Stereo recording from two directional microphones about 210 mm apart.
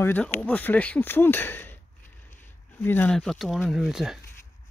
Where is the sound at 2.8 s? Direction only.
10° left (ahead or behind).